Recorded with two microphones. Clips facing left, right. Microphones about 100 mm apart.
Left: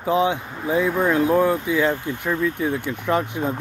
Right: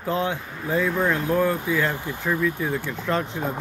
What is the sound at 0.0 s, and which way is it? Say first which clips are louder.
Speech: left 5 dB; 15° left (ahead or behind).